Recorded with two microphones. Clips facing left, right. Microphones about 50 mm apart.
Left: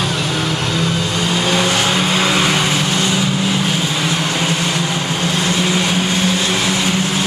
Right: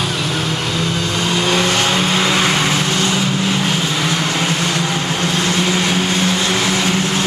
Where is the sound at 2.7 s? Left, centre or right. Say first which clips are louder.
Even; left.